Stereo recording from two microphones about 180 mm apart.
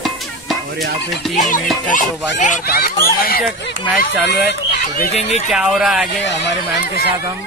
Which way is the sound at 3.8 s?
Centre (ahead or behind).